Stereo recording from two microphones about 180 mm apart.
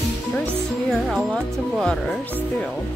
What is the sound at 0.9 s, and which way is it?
Speech, centre (ahead or behind).